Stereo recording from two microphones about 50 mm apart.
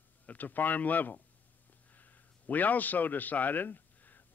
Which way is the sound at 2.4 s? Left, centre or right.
Left.